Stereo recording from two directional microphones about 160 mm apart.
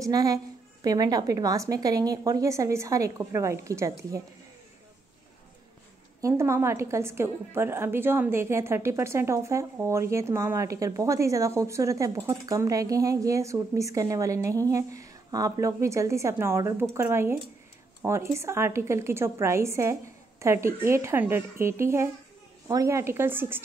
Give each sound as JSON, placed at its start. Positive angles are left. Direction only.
{"t": 0.0, "sound": "a woman's voice", "side_deg": -20}
{"t": 6.2, "sound": "a woman's voice", "side_deg": -15}